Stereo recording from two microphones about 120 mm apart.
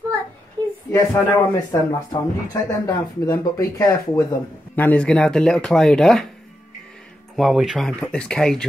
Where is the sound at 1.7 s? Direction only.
30° left (ahead or behind).